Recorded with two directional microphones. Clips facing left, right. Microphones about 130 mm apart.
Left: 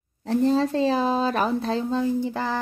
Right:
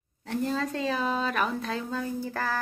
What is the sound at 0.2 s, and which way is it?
A woman's voice, 30° left (ahead or behind).